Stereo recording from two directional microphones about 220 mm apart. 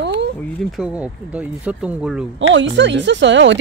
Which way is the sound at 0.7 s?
5° right (ahead or behind).